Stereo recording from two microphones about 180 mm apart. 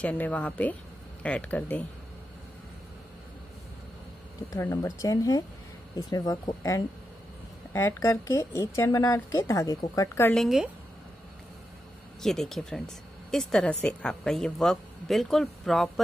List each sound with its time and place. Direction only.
0.0 s speech: 10° left (ahead or behind)
4.5 s speech: 15° left (ahead or behind)
10.3 s speech: centre (ahead or behind)
12.2 s speech: centre (ahead or behind)